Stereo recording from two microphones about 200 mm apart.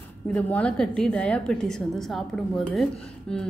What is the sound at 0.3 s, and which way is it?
A woman's voice, 5° left (ahead or behind).